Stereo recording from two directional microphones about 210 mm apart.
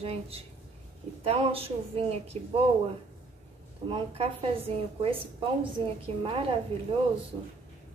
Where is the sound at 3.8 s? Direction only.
25° right (ahead or behind).